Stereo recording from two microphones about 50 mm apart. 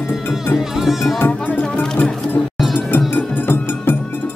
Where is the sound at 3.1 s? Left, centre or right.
Left.